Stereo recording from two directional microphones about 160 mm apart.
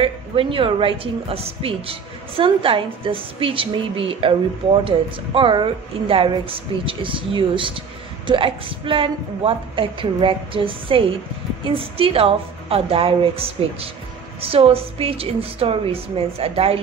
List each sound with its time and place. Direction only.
0.0 s a woman's voice: 35° right (ahead or behind)